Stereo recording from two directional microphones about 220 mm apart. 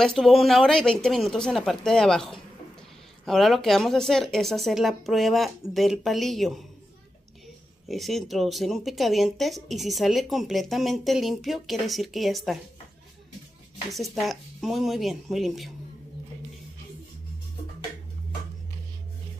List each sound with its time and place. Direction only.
0.0 s speech: centre (ahead or behind)
7.9 s speech: centre (ahead or behind)
13.9 s speech: centre (ahead or behind)